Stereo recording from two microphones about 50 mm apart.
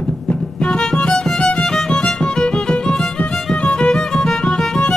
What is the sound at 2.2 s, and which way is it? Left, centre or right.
Music, centre.